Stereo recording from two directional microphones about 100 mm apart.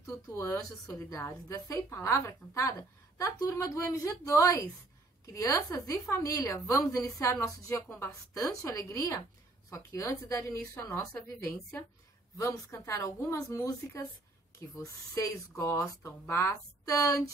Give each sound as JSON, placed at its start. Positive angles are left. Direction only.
{"t": 0.0, "sound": "a woman's voice", "side_deg": 30}
{"t": 12.4, "sound": "a woman's voice", "side_deg": 30}
{"t": 15.1, "sound": "a woman's voice", "side_deg": 25}